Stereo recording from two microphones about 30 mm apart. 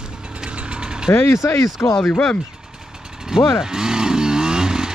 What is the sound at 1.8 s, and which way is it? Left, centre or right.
Speech, left.